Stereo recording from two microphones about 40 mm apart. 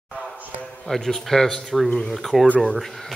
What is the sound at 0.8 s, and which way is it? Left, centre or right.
Speech, centre.